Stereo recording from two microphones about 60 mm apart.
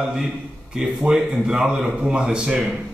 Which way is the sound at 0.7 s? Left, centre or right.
Centre.